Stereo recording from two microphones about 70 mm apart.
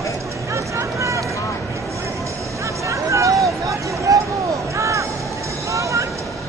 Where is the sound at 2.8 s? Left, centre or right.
Right.